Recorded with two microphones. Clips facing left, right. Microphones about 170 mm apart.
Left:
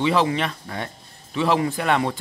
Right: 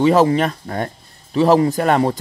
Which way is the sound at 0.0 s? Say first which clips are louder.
Right 7 dB; 40° right (ahead or behind).